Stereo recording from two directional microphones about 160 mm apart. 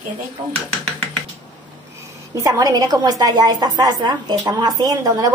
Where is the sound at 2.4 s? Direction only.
25° right (ahead or behind).